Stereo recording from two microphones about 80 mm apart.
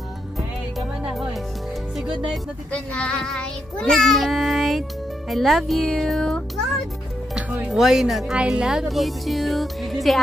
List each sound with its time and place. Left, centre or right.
0.7 s music: centre
2.7 s child singing: centre
7.3 s music: centre
7.7 s child singing: centre